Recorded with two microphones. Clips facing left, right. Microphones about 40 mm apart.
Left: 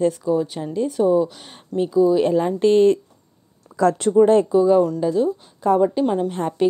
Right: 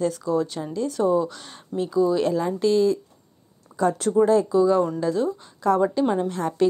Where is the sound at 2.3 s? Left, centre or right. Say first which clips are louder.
Left 5 dB; left.